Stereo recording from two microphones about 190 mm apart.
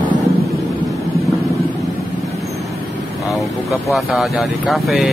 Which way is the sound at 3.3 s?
15° left (ahead or behind).